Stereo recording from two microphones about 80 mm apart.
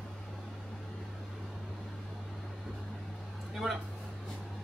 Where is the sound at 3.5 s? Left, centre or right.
Centre.